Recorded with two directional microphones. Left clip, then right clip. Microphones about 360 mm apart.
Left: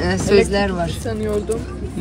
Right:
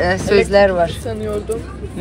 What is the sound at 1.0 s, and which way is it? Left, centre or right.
Speech, left.